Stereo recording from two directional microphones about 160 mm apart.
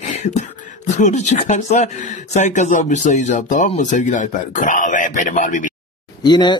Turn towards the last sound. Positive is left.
turn(degrees=25)  # may be behind; listen again after turning